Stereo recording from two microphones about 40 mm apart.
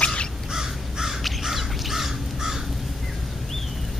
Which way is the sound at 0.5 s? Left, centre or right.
Centre.